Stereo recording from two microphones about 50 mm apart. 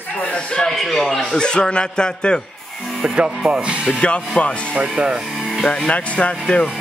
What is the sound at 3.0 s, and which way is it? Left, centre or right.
Speech, centre.